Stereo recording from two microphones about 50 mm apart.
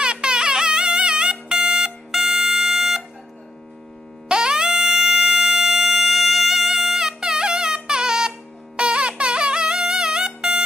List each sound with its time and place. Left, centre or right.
0.0 s music: centre
4.3 s music: centre